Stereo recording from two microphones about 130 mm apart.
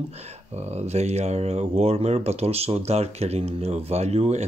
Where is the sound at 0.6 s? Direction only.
55° right (ahead or behind).